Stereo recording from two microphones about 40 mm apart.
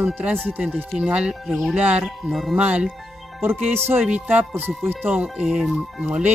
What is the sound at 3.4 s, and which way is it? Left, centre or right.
Speech, right.